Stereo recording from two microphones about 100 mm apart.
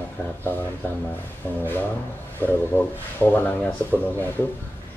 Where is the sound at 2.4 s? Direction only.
20° left (ahead or behind).